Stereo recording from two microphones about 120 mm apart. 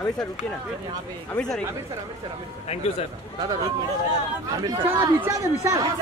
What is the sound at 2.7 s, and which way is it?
Speech, 60° left (ahead or behind).